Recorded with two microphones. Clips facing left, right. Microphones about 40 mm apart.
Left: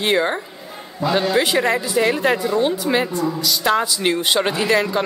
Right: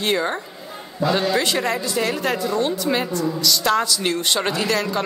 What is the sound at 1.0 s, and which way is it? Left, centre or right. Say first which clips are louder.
A woman's voice: left 2 dB; centre.